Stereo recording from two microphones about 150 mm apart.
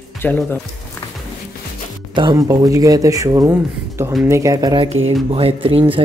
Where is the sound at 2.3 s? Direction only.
20° right (ahead or behind).